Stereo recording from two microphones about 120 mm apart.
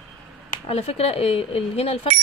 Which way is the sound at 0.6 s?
55° left (ahead or behind).